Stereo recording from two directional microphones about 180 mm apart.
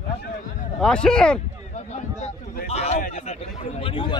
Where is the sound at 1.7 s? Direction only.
40° left (ahead or behind).